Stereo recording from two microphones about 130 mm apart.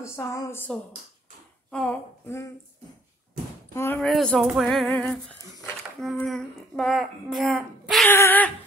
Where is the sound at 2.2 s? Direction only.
20° left (ahead or behind).